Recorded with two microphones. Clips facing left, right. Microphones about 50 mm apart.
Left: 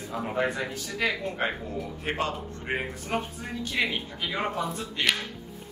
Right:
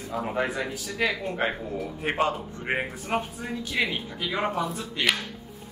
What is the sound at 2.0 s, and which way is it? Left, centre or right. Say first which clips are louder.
A man's voice: right 5 dB; right.